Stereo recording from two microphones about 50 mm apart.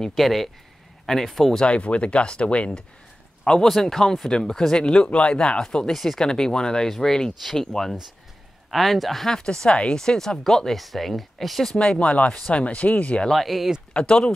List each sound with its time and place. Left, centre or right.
0.0 s a man's voice: centre
1.7 s speech: left
3.6 s speech: centre
5.9 s a man's voice: centre
11.8 s speech: centre
13.3 s a man's voice: centre
13.9 s speech: left